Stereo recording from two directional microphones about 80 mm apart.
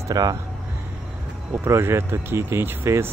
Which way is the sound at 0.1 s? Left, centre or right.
Right.